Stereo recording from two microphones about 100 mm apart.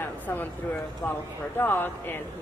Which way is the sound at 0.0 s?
20° left (ahead or behind).